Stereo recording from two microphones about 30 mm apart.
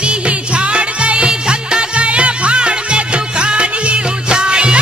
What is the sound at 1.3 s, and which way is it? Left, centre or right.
Music, right.